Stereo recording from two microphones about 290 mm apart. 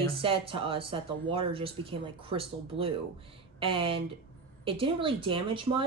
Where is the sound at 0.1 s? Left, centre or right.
Centre.